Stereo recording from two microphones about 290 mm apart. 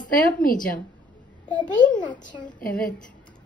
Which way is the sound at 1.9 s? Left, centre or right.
Centre.